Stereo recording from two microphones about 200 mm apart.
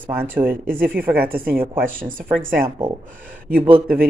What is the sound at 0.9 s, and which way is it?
Speech, 50° right (ahead or behind).